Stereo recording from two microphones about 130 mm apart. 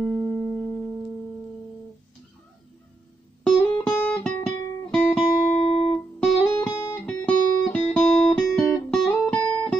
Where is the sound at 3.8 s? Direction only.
5° left (ahead or behind).